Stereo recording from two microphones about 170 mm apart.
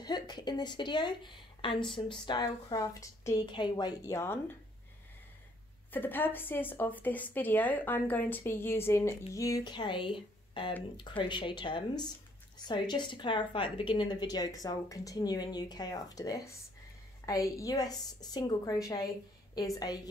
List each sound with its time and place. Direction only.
0.0 s a woman's voice: 25° left (ahead or behind)
5.9 s a woman's voice: 10° left (ahead or behind)